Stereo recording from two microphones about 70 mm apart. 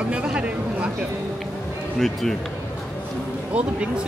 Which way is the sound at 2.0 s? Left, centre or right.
Centre.